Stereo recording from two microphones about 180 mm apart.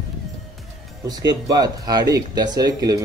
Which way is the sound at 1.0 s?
20° right (ahead or behind).